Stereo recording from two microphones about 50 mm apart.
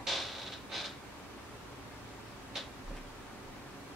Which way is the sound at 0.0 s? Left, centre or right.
Centre.